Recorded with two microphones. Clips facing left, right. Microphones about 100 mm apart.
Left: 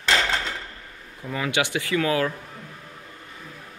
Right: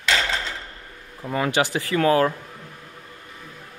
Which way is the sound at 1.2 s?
35° right (ahead or behind).